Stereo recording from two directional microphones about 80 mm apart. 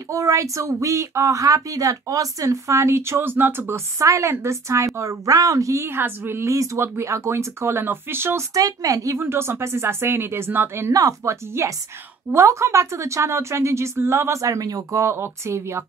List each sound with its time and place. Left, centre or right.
0.1 s a woman's voice: right
4.0 s a woman's voice: right
8.5 s a woman's voice: right
9.2 s a woman's voice: right
10.9 s a woman's voice: right
15.0 s a woman's voice: right